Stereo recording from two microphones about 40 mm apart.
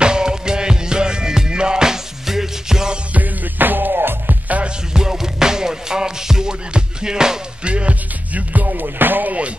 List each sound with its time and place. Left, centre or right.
0.0 s music: centre
3.1 s music: right
4.9 s music: centre
7.6 s music: right